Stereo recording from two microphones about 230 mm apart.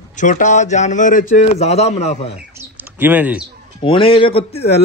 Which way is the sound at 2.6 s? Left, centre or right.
Centre.